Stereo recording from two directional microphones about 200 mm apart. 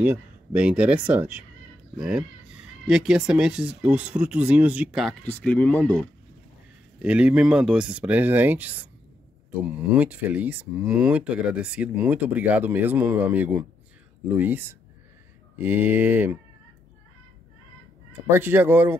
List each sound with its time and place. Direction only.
0.0 s speech: 5° right (ahead or behind)
5.2 s speech: 5° left (ahead or behind)
7.0 s speech: 5° right (ahead or behind)
18.3 s speech: 10° right (ahead or behind)